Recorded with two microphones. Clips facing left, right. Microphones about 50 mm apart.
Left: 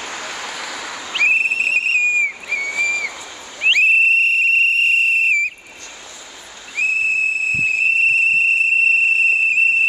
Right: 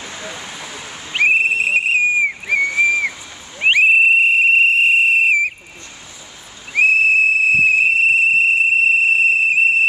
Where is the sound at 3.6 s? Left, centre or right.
Centre.